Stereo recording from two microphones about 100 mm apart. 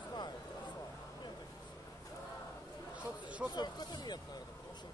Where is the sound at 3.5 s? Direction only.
45° left (ahead or behind).